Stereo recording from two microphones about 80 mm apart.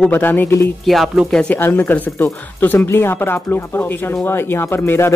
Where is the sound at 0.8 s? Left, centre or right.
Centre.